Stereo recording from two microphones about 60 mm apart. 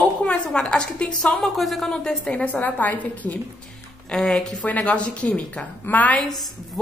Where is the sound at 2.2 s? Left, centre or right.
Left.